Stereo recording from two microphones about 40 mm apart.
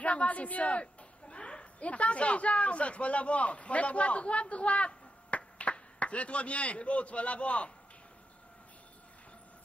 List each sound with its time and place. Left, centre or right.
0.0 s a woman's voice: left